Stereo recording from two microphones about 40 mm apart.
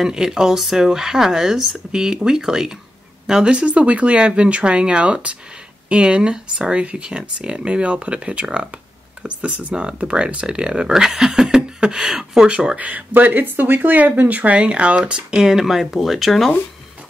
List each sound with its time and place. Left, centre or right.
0.0 s speech: centre
1.9 s speech: centre
3.4 s speech: right; by 12.4 s centre
12.4 s speech: right
12.7 s speech: right
13.1 s speech: right
15.1 s speech: centre
15.6 s speech: centre